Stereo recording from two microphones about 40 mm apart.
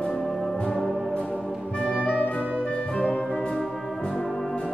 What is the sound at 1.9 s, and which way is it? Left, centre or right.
Music, left.